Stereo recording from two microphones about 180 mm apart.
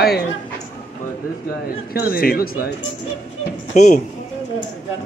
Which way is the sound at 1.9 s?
55° left (ahead or behind).